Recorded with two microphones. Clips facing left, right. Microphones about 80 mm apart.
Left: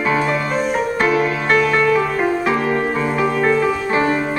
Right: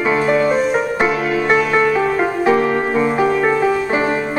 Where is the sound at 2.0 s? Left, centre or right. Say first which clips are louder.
Right 1 dB; right.